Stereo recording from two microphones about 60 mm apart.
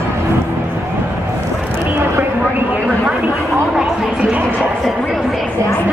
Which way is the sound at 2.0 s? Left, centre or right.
Right.